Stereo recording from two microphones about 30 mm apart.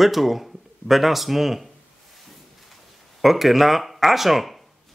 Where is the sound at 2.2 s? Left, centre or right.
Centre.